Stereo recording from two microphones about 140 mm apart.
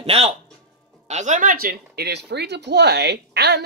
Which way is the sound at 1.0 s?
55° right (ahead or behind).